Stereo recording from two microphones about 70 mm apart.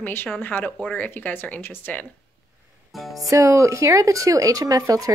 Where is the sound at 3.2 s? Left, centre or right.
Right.